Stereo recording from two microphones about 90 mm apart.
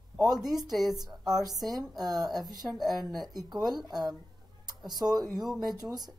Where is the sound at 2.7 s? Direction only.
Centre (ahead or behind).